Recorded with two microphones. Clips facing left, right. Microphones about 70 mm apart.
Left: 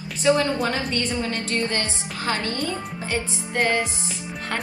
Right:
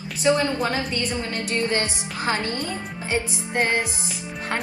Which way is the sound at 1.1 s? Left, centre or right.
Right.